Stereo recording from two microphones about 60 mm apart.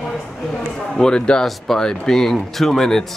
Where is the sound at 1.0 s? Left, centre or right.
Centre.